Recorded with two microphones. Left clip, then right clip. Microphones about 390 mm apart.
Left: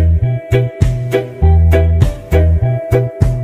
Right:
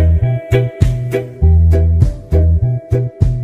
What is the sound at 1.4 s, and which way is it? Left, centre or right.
Music, left.